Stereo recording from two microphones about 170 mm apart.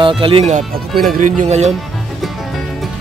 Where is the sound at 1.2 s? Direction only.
45° right (ahead or behind).